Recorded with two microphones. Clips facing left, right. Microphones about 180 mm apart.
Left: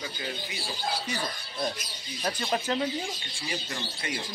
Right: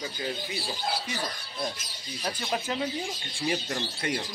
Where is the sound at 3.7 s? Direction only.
50° right (ahead or behind).